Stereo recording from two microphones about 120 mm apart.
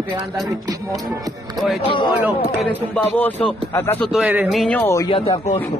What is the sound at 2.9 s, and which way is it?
A man's voice, 15° left (ahead or behind).